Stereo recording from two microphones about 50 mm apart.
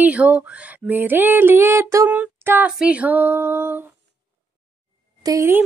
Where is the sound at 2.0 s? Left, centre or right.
Right.